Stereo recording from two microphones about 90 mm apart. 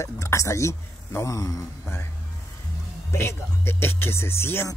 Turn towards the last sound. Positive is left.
turn(degrees=25)  # may be behind; listen again after turning